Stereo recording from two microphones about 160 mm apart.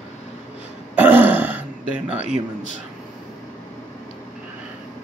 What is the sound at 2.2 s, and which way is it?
Speech, 50° left (ahead or behind).